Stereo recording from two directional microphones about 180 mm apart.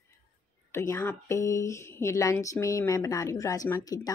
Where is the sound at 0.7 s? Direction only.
15° left (ahead or behind).